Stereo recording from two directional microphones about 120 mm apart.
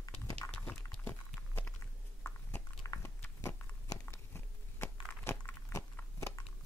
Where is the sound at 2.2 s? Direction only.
20° left (ahead or behind).